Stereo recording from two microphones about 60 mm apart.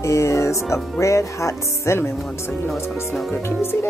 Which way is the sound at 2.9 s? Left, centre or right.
Centre.